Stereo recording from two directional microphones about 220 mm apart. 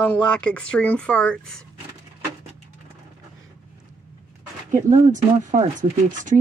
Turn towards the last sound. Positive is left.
turn(degrees=-35)  # may be behind; listen again after turning